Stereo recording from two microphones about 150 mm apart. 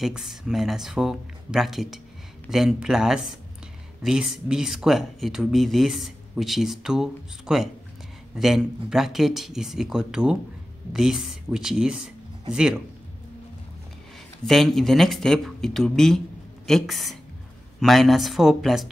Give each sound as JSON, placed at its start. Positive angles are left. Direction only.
{"t": 0.0, "sound": "speech", "side_deg": 0}
{"t": 14.4, "sound": "speech", "side_deg": 0}